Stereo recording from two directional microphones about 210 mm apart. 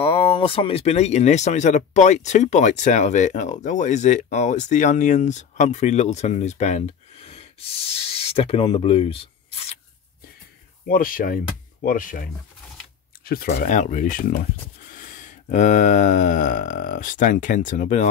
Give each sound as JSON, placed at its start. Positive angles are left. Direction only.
{"t": 0.0, "sound": "speech", "side_deg": 25}
{"t": 10.9, "sound": "speech", "side_deg": 45}
{"t": 13.5, "sound": "speech", "side_deg": 35}
{"t": 14.9, "sound": "a sound", "side_deg": 40}